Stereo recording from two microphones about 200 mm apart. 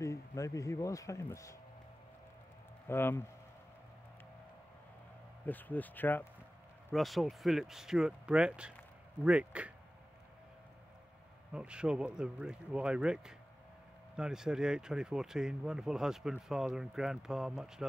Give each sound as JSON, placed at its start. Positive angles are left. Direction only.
{"t": 0.0, "sound": "speech", "side_deg": 15}
{"t": 2.9, "sound": "speech", "side_deg": 10}
{"t": 5.5, "sound": "speech", "side_deg": 10}
{"t": 11.5, "sound": "speech", "side_deg": -5}